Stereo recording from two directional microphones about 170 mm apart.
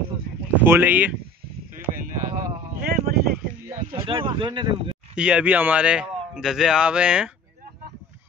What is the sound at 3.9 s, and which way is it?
Speech, 30° right (ahead or behind).